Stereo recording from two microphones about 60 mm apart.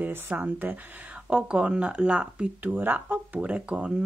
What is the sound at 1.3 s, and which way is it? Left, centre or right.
Speech, centre.